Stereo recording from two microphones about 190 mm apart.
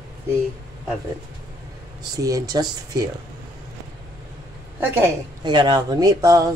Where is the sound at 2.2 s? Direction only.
20° right (ahead or behind).